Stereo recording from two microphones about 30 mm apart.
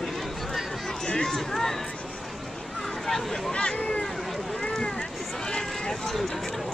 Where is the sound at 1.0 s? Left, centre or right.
Left.